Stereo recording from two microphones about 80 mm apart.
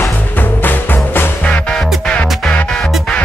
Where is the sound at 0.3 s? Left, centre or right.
Left.